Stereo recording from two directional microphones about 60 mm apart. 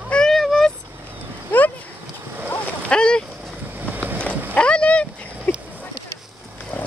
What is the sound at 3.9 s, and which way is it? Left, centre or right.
Boat, right.